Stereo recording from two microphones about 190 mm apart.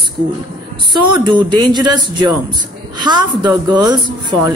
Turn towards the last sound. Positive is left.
turn(degrees=-25)  # may be behind; listen again after turning